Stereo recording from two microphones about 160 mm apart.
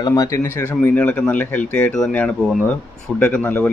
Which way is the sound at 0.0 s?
20° left (ahead or behind).